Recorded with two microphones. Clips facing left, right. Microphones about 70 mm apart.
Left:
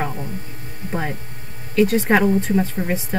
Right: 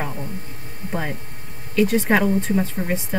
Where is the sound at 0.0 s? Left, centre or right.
Centre.